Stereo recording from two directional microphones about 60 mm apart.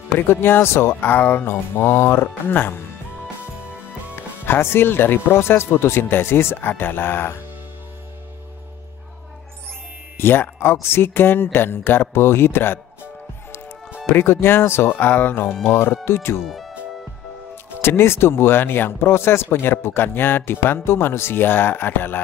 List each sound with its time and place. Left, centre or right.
0.3 s speech: left
4.5 s speech: left
10.1 s speech: left
14.0 s speech: left
16.4 s music: centre
17.6 s speech: left